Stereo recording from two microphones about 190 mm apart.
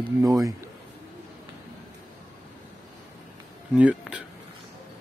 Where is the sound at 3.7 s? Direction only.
5° right (ahead or behind).